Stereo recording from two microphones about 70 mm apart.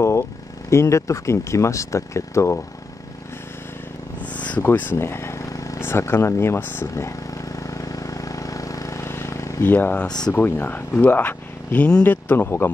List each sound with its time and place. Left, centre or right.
0.0 s speech: left
4.2 s a sound: left
4.6 s speech: left
4.9 s a sound: left
5.8 s speech: left
6.9 s vehicle: left
9.0 s vehicle: left
9.6 s speech: left